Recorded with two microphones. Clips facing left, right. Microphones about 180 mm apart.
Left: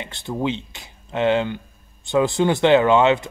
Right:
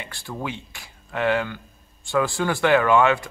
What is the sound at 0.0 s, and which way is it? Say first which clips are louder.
Speech: left 7 dB; 20° left (ahead or behind).